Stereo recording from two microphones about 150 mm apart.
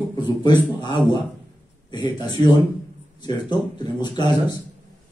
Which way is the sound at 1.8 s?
30° left (ahead or behind).